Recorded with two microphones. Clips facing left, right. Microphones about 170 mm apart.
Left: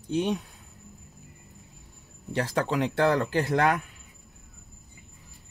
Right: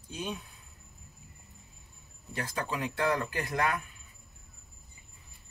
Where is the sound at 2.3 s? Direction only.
75° left (ahead or behind).